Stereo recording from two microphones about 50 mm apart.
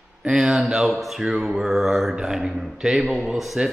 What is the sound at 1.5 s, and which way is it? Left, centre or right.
A man's voice, centre.